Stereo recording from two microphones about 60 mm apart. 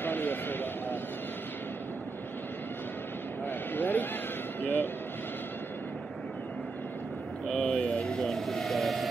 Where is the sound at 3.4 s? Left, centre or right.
Left.